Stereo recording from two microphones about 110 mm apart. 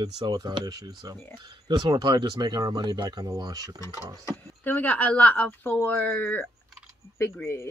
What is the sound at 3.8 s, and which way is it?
Speech, 30° left (ahead or behind).